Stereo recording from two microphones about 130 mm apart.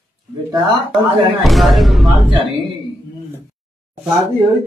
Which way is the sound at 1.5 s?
Centre (ahead or behind).